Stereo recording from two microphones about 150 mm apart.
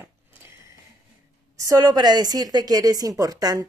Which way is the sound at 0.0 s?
15° right (ahead or behind).